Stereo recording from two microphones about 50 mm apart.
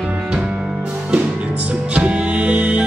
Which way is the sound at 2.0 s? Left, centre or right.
Right.